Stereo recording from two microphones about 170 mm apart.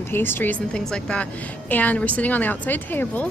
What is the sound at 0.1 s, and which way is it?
A woman's voice, 15° left (ahead or behind).